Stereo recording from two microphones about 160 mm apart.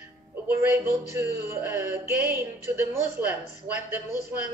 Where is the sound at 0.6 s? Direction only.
15° right (ahead or behind).